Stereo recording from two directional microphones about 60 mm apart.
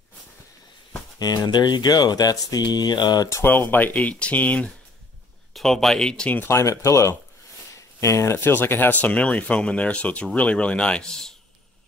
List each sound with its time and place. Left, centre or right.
1.9 s speech: left
3.4 s speech: left
5.5 s speech: centre
6.5 s speech: left
7.7 s a sound: left
8.4 s speech: left; by 11.3 s centre